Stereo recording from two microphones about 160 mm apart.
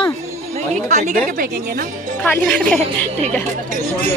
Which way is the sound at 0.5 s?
45° right (ahead or behind).